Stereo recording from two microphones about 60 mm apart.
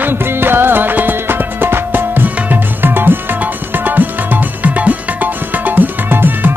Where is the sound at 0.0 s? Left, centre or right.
Right.